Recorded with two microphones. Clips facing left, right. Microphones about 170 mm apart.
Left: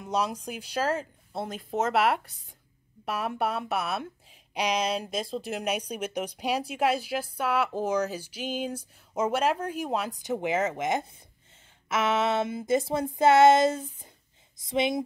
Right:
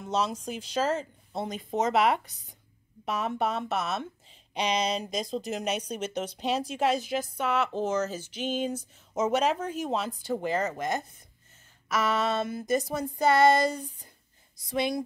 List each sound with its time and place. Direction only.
0.0 s a woman's voice: 10° left (ahead or behind); by 11.2 s 25° left (ahead or behind)
11.9 s child singing: 25° left (ahead or behind)